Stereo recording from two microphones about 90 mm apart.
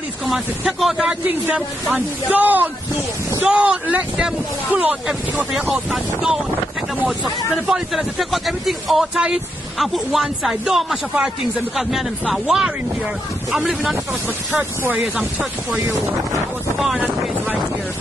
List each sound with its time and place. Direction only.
0.3 s speech: centre (ahead or behind)
5.5 s speech: 5° right (ahead or behind)
14.5 s speech: 20° right (ahead or behind)
16.7 s speech: centre (ahead or behind)